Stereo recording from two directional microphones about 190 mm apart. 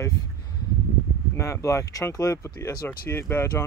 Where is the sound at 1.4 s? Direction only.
15° left (ahead or behind).